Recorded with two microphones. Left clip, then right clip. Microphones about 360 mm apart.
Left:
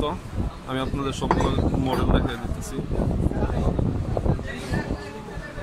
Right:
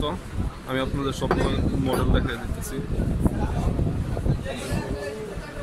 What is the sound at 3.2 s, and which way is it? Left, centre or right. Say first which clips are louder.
Speech: right 2 dB; right.